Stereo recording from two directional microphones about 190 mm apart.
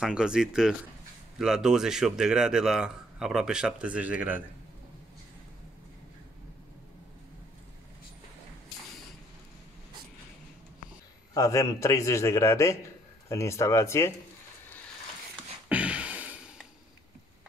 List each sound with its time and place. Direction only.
0.0 s a man's voice: 5° right (ahead or behind)
11.3 s a man's voice: 20° left (ahead or behind)
15.7 s a sound: 5° right (ahead or behind)